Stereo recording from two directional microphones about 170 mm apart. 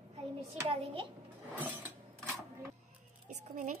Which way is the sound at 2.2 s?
15° right (ahead or behind).